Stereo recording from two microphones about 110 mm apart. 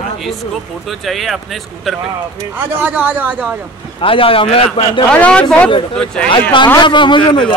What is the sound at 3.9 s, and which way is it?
Speech, 55° left (ahead or behind).